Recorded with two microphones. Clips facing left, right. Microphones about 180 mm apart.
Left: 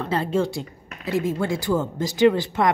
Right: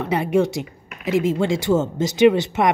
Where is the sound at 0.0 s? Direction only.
15° right (ahead or behind).